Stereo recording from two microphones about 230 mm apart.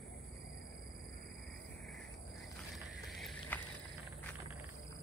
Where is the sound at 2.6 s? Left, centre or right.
Centre.